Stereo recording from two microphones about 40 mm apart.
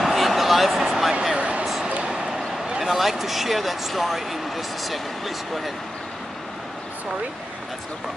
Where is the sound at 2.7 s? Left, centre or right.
Centre.